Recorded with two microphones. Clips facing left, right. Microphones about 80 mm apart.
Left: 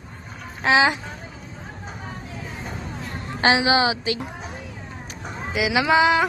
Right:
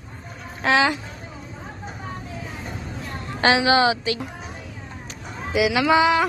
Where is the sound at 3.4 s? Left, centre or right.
Centre.